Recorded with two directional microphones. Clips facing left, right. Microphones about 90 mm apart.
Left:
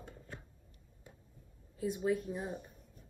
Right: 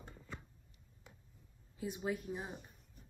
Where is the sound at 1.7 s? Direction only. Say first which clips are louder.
Left 6 dB; 20° right (ahead or behind).